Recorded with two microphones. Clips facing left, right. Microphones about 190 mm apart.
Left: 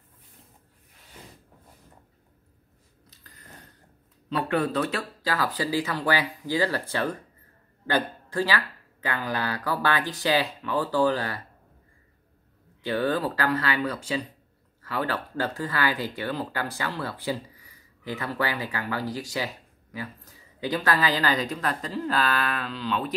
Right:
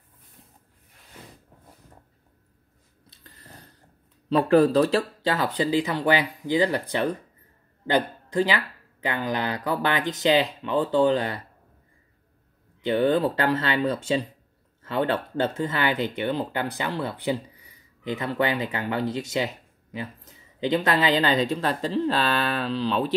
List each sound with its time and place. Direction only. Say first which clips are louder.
3.3 s a sound: right 1 dB; 30° right (ahead or behind)
4.3 s speech: right 8 dB; 35° right (ahead or behind)
12.8 s speech: right 5 dB; 20° right (ahead or behind)